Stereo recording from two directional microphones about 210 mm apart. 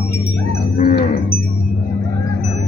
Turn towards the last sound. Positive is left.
turn(degrees=45)  # may be behind; listen again after turning